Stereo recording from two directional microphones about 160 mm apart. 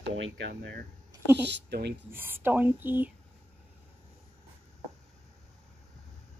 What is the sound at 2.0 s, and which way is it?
A woman's voice, 15° right (ahead or behind).